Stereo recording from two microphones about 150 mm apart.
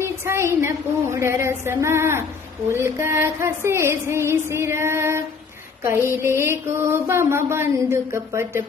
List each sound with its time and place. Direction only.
0.0 s mantra: 15° right (ahead or behind)